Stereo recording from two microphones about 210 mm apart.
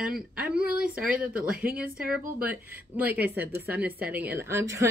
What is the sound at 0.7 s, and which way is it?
Speech, 5° right (ahead or behind).